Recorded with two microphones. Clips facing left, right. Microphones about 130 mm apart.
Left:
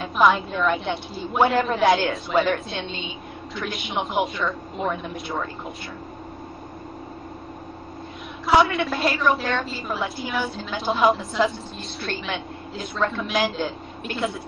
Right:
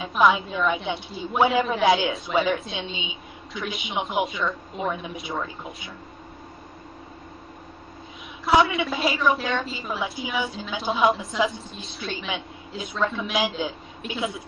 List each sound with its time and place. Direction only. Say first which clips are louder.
0.0 s a woman's voice: left 1 dB; centre (ahead or behind)
8.5 s a woman's voice: left 1 dB; centre (ahead or behind)